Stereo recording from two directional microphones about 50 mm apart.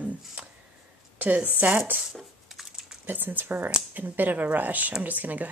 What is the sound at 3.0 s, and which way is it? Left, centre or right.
A woman's voice, right.